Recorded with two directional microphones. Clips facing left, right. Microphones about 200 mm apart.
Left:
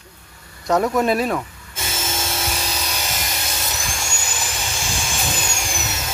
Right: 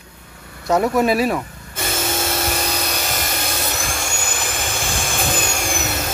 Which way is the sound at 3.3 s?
55° right (ahead or behind).